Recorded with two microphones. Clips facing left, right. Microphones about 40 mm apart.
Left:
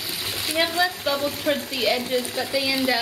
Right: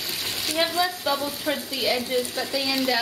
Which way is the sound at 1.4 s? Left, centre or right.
Centre.